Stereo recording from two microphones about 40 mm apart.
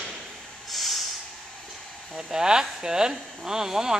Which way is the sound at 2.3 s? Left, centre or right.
Centre.